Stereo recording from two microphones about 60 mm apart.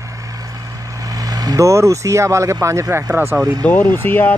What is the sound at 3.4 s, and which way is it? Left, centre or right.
Speech, right.